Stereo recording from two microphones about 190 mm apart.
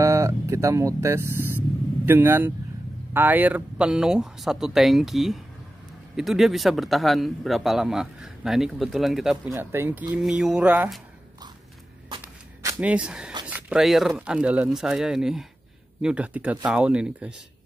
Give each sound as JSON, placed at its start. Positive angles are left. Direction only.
{"t": 0.0, "sound": "a man's voice", "side_deg": -15}
{"t": 12.2, "sound": "a sound", "side_deg": -10}
{"t": 12.9, "sound": "a man's voice", "side_deg": -5}